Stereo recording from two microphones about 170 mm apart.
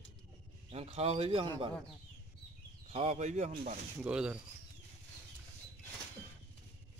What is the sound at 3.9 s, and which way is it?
Speech, 5° right (ahead or behind).